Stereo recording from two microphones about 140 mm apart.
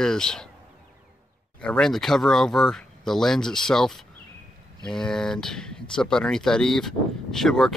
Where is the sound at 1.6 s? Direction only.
5° left (ahead or behind).